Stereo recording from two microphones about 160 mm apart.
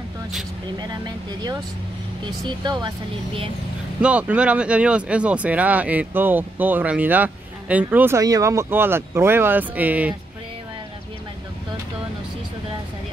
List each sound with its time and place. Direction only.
0.7 s speech: 25° right (ahead or behind)
4.0 s speech: 10° right (ahead or behind)